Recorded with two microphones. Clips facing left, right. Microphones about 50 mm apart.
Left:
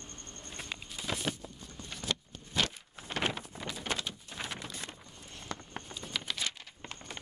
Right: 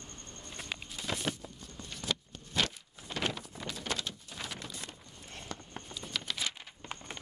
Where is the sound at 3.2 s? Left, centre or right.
Left.